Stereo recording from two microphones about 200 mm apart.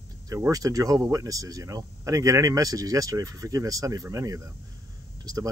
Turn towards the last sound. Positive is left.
turn(degrees=-20)  # may be behind; listen again after turning